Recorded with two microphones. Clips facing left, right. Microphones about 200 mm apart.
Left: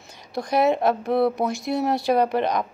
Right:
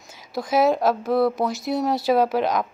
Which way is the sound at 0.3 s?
5° right (ahead or behind).